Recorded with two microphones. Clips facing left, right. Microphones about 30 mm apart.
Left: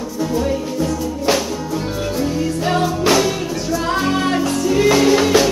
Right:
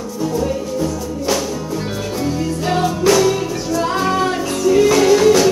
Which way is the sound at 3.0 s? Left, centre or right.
Left.